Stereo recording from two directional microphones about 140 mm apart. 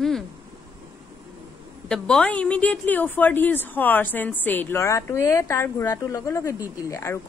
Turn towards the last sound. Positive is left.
turn(degrees=20)  # may be behind; listen again after turning